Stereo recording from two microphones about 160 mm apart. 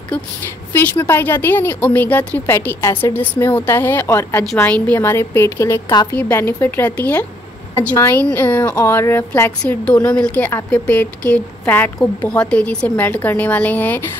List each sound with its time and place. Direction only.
0.1 s a woman's voice: 10° left (ahead or behind)
6.1 s a woman's voice: 10° left (ahead or behind)